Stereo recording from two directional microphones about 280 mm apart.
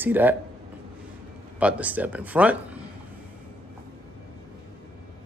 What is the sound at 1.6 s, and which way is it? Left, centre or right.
Speech, centre.